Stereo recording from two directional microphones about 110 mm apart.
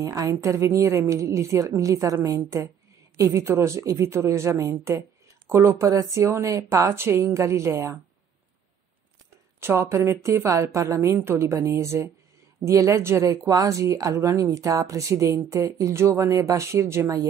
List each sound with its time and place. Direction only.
0.0 s speech: 30° right (ahead or behind)
9.6 s speech: 25° right (ahead or behind)